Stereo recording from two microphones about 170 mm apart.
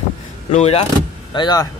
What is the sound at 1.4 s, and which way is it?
Speech, 25° left (ahead or behind).